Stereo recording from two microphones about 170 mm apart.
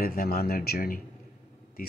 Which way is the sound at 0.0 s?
60° left (ahead or behind).